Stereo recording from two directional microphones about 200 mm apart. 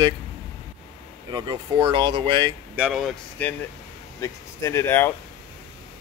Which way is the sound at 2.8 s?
Centre (ahead or behind).